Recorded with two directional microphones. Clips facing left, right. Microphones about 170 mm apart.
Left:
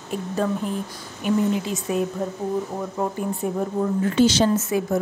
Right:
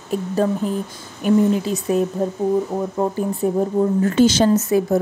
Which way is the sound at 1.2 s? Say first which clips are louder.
Right 5 dB; 45° right (ahead or behind).